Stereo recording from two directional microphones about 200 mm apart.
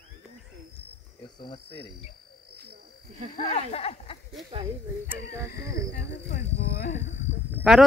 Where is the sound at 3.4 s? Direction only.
30° left (ahead or behind).